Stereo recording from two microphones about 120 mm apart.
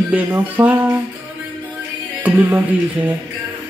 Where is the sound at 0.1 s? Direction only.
15° right (ahead or behind).